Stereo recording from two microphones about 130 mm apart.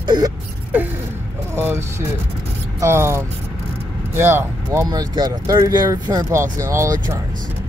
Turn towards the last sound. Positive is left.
turn(degrees=-25)  # may be behind; listen again after turning